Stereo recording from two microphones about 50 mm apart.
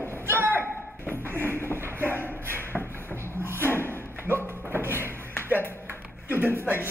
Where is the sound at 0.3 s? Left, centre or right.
Right.